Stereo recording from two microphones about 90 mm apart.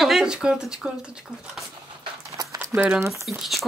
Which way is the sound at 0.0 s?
5° right (ahead or behind).